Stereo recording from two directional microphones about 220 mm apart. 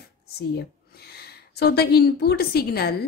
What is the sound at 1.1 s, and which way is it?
A woman's voice, 45° left (ahead or behind).